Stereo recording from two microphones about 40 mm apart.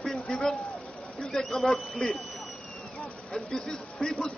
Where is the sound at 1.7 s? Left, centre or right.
Centre.